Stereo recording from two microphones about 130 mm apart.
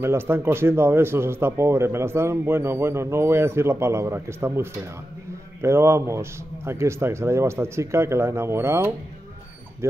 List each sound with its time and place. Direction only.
0.0 s speech: 20° right (ahead or behind)